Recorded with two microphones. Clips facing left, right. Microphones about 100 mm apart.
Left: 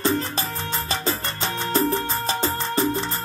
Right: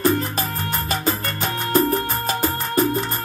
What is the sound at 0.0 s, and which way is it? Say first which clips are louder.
Music: right 3 dB; 25° left (ahead or behind).